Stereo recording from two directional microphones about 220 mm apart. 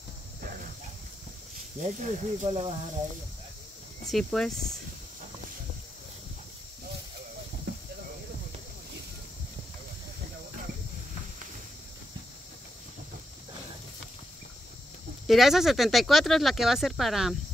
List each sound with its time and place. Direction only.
1.8 s speech: 35° right (ahead or behind)
4.0 s speech: centre (ahead or behind)
15.2 s speech: centre (ahead or behind)